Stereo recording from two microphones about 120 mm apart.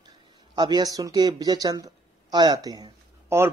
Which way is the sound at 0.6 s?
35° right (ahead or behind).